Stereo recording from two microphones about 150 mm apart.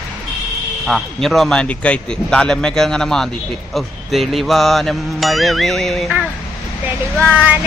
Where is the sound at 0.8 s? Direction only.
Centre (ahead or behind).